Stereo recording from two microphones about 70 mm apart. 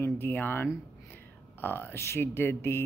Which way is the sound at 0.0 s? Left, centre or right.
Left.